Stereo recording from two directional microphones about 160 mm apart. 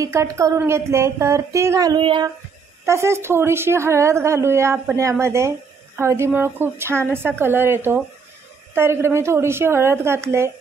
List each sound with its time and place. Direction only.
0.0 s speech: 20° right (ahead or behind)
2.8 s a woman's voice: 15° right (ahead or behind)